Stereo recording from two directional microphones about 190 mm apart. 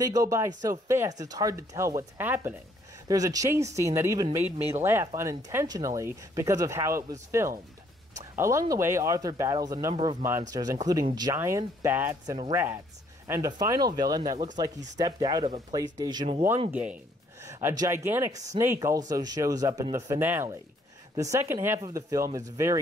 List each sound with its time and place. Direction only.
0.0 s speech: 15° right (ahead or behind)
17.4 s speech: 15° right (ahead or behind)